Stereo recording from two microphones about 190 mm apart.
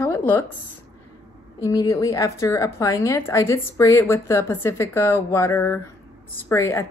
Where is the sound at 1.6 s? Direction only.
15° left (ahead or behind).